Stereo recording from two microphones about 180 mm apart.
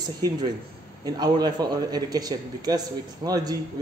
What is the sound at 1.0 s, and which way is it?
A man's voice, 20° right (ahead or behind).